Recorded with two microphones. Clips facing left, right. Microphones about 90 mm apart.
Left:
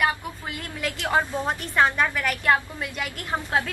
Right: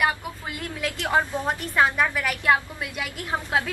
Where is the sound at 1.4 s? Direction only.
5° right (ahead or behind).